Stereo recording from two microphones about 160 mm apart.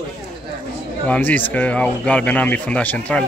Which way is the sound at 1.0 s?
10° left (ahead or behind).